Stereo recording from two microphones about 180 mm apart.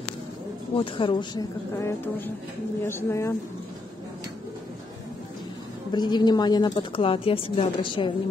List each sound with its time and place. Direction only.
0.7 s a woman's voice: 30° left (ahead or behind)
5.9 s a woman's voice: 25° left (ahead or behind)